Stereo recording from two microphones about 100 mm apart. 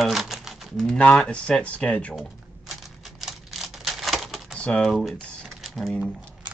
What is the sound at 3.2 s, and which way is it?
Typewriter, centre (ahead or behind).